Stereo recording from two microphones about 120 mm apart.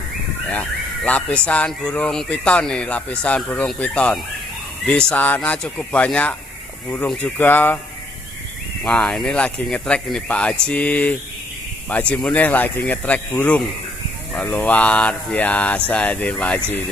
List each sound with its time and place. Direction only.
0.5 s speech: 15° left (ahead or behind)
7.3 s speech: 15° left (ahead or behind)
8.8 s speech: 10° left (ahead or behind)